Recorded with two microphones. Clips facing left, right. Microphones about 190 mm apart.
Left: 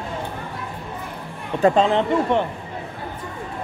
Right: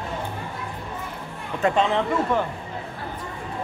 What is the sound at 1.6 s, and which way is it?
Speech, 35° left (ahead or behind).